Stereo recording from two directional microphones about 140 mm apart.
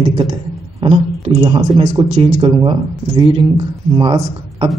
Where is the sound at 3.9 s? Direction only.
25° right (ahead or behind).